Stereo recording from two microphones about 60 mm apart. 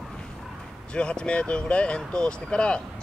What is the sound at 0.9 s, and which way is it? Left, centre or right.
Speech, centre.